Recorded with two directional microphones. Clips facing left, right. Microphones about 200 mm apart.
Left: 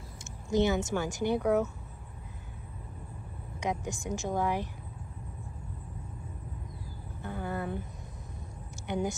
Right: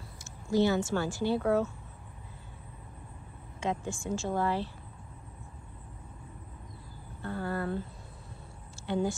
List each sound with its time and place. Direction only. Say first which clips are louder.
0.5 s a woman's voice: right 1 dB; 20° left (ahead or behind)
3.6 s a woman's voice: even; 15° left (ahead or behind)
7.2 s speech: right 2 dB; 15° left (ahead or behind)